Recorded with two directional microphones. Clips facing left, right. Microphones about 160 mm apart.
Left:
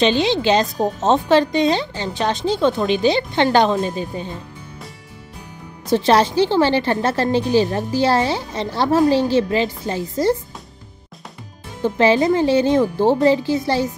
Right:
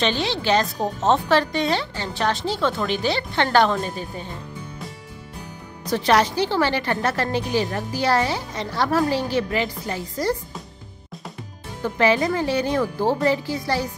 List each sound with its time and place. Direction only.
0.0 s a woman's voice: 20° left (ahead or behind)
5.9 s a woman's voice: 25° left (ahead or behind)
11.8 s a woman's voice: 25° left (ahead or behind)